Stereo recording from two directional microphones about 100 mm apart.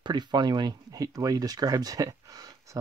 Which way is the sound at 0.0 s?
50° right (ahead or behind).